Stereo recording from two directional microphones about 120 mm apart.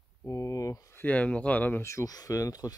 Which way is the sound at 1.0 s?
10° left (ahead or behind).